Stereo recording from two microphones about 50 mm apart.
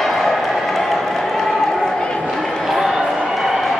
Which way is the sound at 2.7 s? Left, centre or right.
Centre.